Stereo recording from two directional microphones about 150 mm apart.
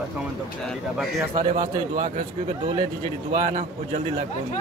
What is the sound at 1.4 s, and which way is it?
Speech, 60° right (ahead or behind).